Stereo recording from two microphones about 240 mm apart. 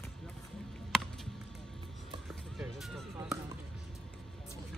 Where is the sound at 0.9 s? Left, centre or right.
Centre.